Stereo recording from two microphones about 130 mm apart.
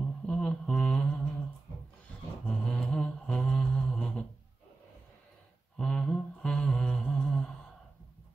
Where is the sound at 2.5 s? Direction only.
5° left (ahead or behind).